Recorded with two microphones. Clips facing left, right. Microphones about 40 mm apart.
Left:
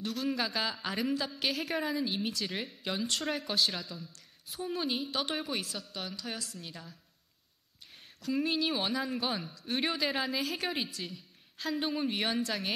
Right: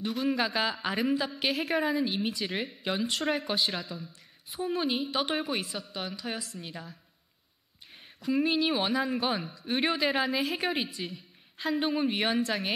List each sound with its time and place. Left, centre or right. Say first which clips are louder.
0.0 s speech: right 4 dB; centre
8.2 s speech: right 4 dB; centre